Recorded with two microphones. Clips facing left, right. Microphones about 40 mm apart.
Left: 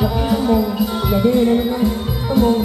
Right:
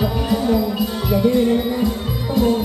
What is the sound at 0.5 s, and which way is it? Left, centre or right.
Music, left.